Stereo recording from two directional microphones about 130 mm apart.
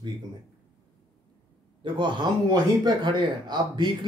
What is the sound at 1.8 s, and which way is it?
Speech, 35° right (ahead or behind).